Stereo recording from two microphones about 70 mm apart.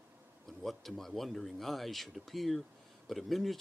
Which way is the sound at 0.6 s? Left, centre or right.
Centre.